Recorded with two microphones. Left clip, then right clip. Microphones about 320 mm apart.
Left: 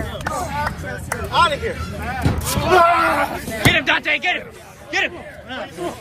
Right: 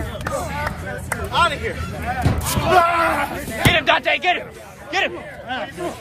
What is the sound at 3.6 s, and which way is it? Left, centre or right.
Speech, centre.